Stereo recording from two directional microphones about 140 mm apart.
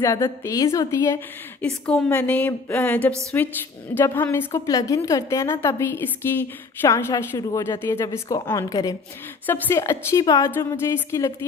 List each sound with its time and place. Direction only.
0.0 s a woman's voice: 25° left (ahead or behind)
1.6 s speech: 5° left (ahead or behind)
2.0 s a sound: 10° left (ahead or behind)
3.9 s a woman's voice: 15° left (ahead or behind)